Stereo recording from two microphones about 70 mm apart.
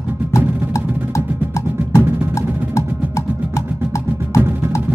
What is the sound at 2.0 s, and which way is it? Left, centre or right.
Music, right.